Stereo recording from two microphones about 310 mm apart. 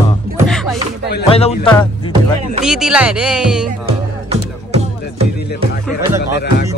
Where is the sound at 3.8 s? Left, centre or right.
Centre.